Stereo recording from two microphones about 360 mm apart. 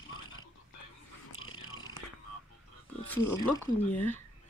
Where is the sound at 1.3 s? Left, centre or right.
Left.